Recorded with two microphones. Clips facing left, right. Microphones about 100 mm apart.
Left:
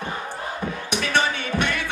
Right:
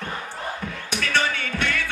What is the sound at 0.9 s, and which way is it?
Music, 20° left (ahead or behind).